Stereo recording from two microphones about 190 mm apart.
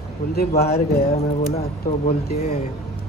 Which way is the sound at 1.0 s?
35° left (ahead or behind).